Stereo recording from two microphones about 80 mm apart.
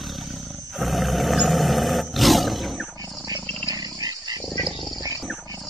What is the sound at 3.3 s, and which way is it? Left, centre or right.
Wild animals, right.